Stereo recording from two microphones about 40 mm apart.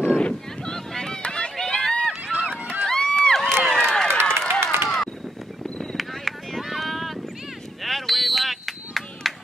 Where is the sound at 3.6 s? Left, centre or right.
Centre.